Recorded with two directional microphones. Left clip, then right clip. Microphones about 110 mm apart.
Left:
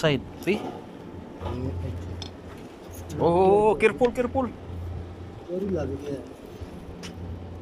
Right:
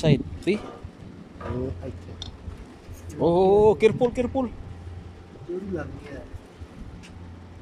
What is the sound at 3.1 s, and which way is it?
Speech, 40° right (ahead or behind).